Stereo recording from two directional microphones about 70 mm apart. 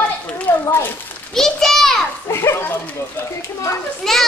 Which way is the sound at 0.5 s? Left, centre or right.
Left.